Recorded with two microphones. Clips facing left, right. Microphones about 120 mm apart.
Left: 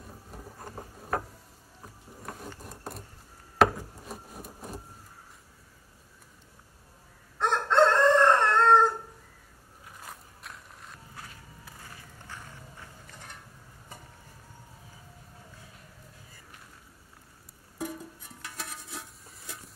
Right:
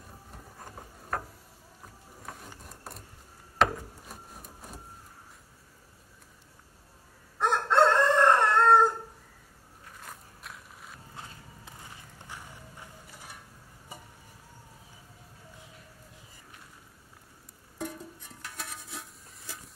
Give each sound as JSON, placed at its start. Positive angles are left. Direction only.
{"t": 0.6, "sound": "a sound", "side_deg": 5}
{"t": 2.2, "sound": "wood", "side_deg": 0}
{"t": 7.3, "sound": "crowing", "side_deg": -5}
{"t": 9.8, "sound": "biting", "side_deg": 5}
{"t": 11.1, "sound": "a sound", "side_deg": -25}
{"t": 12.3, "sound": "music", "side_deg": -15}
{"t": 13.0, "sound": "mechanisms", "side_deg": -10}
{"t": 17.7, "sound": "music", "side_deg": 5}